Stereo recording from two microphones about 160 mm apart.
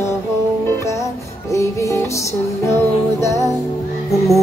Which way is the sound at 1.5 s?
20° left (ahead or behind).